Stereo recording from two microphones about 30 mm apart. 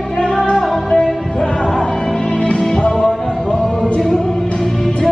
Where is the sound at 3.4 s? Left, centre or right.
Left.